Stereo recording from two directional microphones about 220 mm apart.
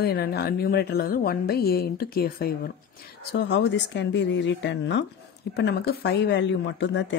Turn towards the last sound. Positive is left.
turn(degrees=55)  # may be behind; listen again after turning